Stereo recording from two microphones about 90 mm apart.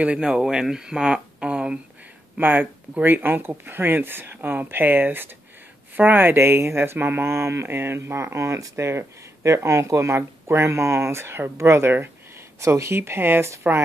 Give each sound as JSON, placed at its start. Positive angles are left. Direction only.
{"t": 0.0, "sound": "speech", "side_deg": -10}